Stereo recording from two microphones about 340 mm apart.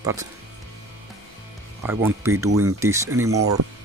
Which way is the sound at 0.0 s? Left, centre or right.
Centre.